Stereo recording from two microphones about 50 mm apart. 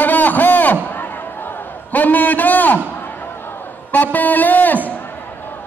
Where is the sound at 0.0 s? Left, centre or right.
Left.